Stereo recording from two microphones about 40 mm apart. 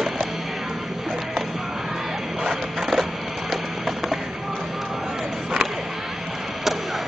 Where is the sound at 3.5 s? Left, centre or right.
Centre.